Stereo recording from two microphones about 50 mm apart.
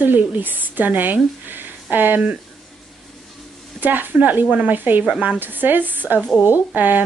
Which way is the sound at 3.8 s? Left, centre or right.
Right.